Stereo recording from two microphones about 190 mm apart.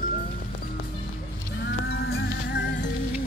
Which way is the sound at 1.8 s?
60° left (ahead or behind).